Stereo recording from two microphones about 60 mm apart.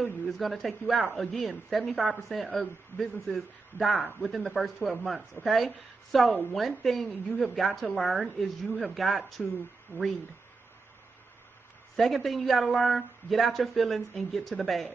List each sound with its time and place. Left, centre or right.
0.0 s speech: centre
9.9 s speech: left
12.0 s speech: centre